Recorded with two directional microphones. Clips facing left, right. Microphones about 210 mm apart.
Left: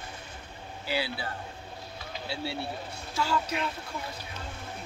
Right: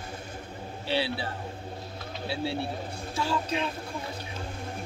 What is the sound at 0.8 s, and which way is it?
A man's voice, 25° right (ahead or behind).